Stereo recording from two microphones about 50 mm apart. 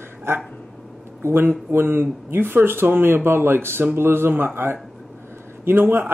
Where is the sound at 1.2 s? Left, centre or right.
Right.